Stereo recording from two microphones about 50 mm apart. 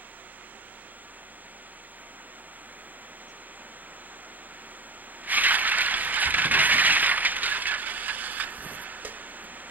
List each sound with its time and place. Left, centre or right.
5.2 s coin: right